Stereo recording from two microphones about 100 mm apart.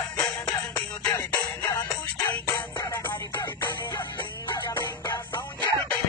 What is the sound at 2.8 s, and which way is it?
Music, 25° left (ahead or behind).